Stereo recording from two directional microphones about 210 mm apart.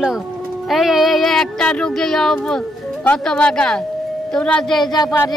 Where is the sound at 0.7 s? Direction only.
Centre (ahead or behind).